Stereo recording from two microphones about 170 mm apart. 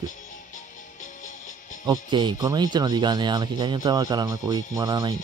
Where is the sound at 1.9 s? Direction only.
25° right (ahead or behind).